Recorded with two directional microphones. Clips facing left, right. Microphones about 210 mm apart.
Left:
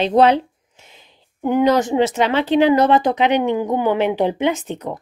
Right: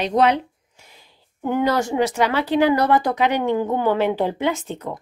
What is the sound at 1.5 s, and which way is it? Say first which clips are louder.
Speech: left 4 dB; 20° left (ahead or behind).